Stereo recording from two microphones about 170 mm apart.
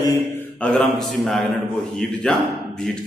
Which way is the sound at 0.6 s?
5° left (ahead or behind).